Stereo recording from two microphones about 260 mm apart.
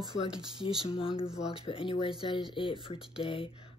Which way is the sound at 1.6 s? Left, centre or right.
Centre.